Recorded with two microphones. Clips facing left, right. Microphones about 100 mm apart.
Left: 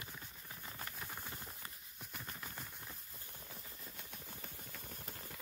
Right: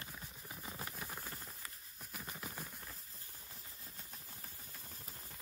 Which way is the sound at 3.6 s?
90° left.